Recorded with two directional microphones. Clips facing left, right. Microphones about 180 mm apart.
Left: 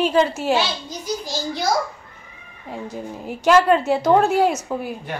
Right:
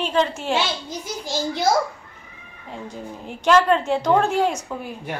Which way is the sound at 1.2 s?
25° right (ahead or behind).